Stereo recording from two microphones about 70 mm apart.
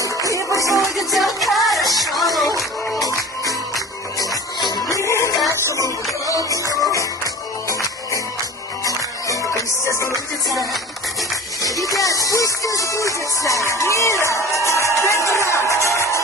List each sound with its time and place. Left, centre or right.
0.5 s music: left
0.9 s music: centre
3.0 s music: left